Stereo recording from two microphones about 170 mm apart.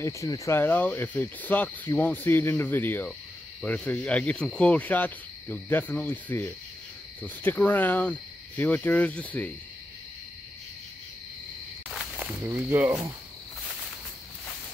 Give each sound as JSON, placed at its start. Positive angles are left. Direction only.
{"t": 0.0, "sound": "speech", "side_deg": 15}
{"t": 11.9, "sound": "snake", "side_deg": -5}
{"t": 12.4, "sound": "speech", "side_deg": -15}